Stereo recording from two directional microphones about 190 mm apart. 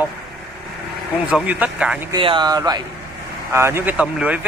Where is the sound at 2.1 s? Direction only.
25° right (ahead or behind).